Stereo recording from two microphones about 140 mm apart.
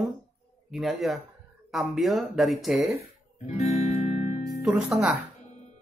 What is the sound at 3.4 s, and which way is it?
Music, 50° left (ahead or behind).